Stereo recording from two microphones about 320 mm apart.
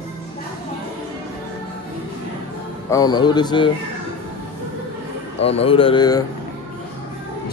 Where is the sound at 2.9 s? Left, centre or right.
Centre.